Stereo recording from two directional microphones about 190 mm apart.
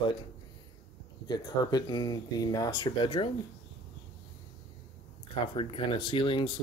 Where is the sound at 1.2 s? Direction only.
20° left (ahead or behind).